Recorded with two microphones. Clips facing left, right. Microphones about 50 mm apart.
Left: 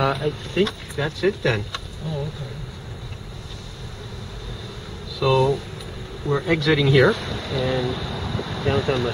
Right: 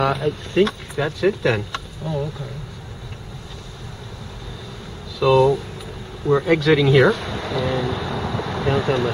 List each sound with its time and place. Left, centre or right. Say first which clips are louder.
0.0 s speech: right 2 dB; centre
1.7 s speech: right 3 dB; centre
5.2 s speech: right 4 dB; centre